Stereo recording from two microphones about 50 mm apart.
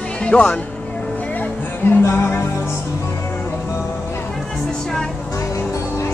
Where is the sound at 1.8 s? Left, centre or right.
Left.